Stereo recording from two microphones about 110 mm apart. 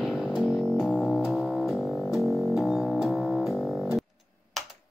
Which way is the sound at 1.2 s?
Centre (ahead or behind).